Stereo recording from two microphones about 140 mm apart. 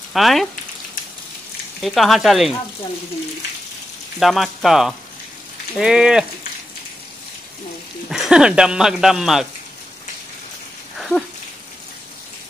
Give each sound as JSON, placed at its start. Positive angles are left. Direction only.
{"t": 0.1, "sound": "speech", "side_deg": 0}
{"t": 1.8, "sound": "speech", "side_deg": 0}
{"t": 4.2, "sound": "speech", "side_deg": 0}
{"t": 8.1, "sound": "speech", "side_deg": -5}
{"t": 11.0, "sound": "dog", "side_deg": 0}